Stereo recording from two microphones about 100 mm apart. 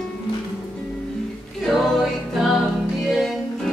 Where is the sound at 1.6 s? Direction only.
Centre (ahead or behind).